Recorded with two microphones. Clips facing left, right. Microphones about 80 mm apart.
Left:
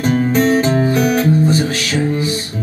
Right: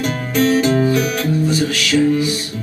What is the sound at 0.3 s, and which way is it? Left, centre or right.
Music, left.